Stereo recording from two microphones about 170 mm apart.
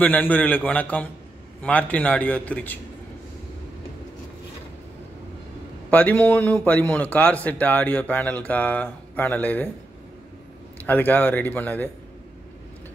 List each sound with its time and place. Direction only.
0.0 s a man's voice: 10° left (ahead or behind)
5.9 s a man's voice: 10° left (ahead or behind)
10.9 s a man's voice: 10° left (ahead or behind)